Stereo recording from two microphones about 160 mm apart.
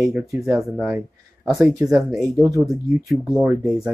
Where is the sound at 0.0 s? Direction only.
20° right (ahead or behind); by 2.2 s centre (ahead or behind).